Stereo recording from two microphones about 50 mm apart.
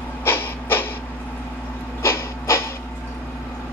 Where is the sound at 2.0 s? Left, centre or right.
Left.